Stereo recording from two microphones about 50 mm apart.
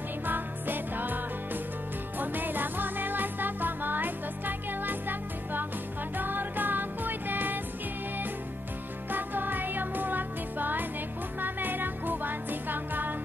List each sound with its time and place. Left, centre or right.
0.3 s music: right
9.1 s music: right